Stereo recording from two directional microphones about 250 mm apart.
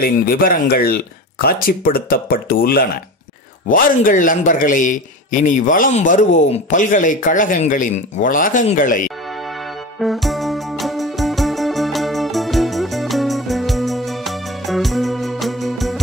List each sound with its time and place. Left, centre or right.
0.0 s a man's voice: left
9.9 s music: centre